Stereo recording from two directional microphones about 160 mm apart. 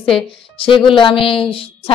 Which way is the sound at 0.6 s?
35° left (ahead or behind).